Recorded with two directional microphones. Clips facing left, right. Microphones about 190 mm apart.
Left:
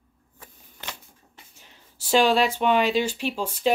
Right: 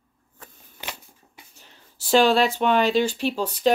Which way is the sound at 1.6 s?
10° left (ahead or behind).